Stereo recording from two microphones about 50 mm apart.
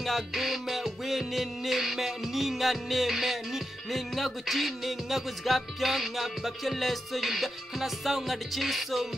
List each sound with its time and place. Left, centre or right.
0.0 s music: centre